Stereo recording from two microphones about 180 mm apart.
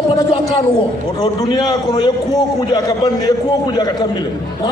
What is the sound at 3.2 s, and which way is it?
Speech, 20° left (ahead or behind).